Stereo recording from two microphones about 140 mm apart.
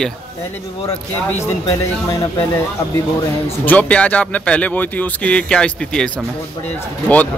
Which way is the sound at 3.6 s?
10° left (ahead or behind).